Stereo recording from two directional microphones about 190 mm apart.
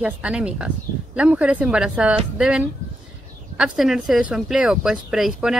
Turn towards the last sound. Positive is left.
turn(degrees=0)  # may be behind; listen again after turning